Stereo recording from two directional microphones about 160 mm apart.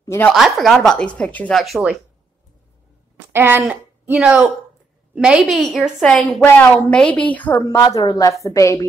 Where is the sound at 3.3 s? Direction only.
10° right (ahead or behind); by 7.4 s 10° left (ahead or behind).